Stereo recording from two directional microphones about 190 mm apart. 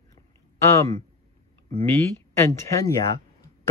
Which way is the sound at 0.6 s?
15° left (ahead or behind).